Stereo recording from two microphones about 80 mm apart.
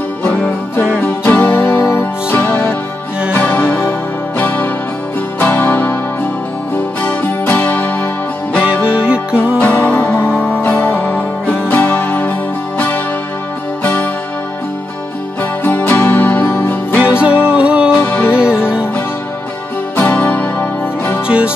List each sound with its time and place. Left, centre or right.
0.2 s music: left
7.0 s music: left
8.9 s music: centre
9.6 s music: left
10.3 s music: centre
10.6 s music: left
15.6 s music: left
17.0 s music: centre
17.9 s music: left
18.3 s music: centre
20.0 s music: left